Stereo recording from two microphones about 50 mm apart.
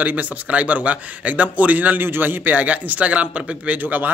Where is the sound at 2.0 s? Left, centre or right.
Right.